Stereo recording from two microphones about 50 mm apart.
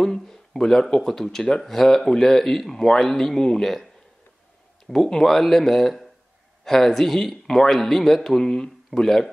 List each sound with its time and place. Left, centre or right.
0.0 s speech: centre